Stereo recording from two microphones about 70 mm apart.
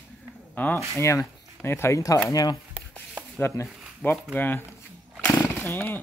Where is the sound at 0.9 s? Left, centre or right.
Left.